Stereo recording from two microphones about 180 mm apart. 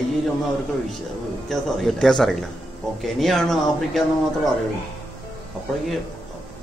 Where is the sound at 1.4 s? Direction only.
Centre (ahead or behind).